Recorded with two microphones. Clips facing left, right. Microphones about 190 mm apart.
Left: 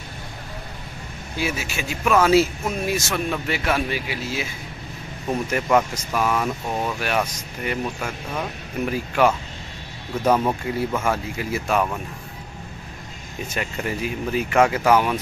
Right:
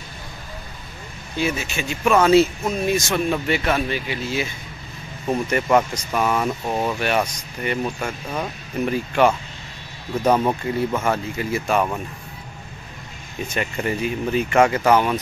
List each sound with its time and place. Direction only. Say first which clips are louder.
1.3 s speech: right 3 dB; 5° left (ahead or behind)
10.6 s speech: right 2 dB; 5° left (ahead or behind)
13.5 s speech: right 3 dB; centre (ahead or behind)